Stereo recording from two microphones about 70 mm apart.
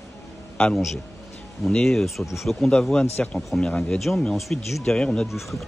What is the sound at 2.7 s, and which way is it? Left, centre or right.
Speech, centre.